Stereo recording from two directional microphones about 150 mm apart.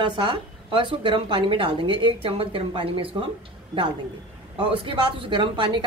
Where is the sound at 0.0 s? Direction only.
30° right (ahead or behind).